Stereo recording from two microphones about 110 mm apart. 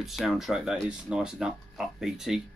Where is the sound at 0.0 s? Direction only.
Centre (ahead or behind).